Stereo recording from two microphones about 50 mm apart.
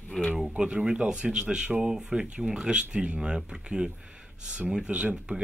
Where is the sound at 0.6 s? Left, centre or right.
Centre.